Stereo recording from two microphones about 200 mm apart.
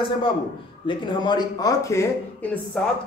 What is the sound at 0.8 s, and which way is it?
Speech, 20° left (ahead or behind).